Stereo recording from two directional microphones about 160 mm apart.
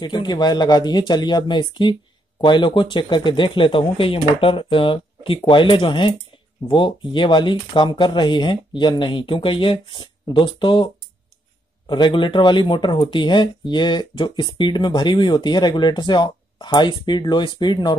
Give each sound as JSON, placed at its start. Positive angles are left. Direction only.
{"t": 0.0, "sound": "speech", "side_deg": 30}
{"t": 11.9, "sound": "speech", "side_deg": 30}